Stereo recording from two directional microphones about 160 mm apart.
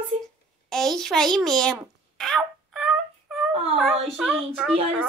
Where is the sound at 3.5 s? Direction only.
40° right (ahead or behind).